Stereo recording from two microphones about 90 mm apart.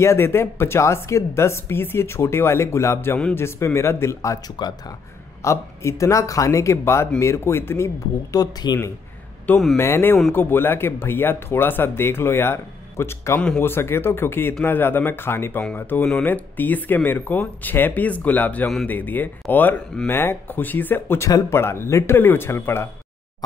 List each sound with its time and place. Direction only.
0.0 s speech: 30° left (ahead or behind)
5.4 s speech: 35° left (ahead or behind)
9.8 s speech: 30° left (ahead or behind)